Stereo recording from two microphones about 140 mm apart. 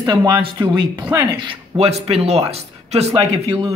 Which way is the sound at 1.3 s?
40° right (ahead or behind).